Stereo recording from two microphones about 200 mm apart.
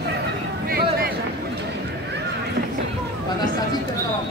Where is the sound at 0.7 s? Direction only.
50° right (ahead or behind).